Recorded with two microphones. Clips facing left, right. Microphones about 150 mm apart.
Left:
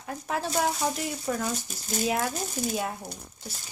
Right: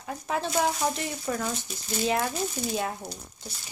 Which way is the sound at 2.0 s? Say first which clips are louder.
Right 1 dB; 5° left (ahead or behind).